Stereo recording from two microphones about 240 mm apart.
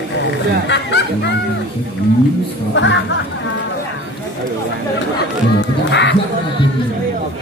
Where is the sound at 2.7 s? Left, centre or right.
Left.